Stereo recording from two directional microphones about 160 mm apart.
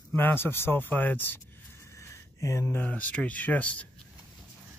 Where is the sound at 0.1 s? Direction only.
15° left (ahead or behind).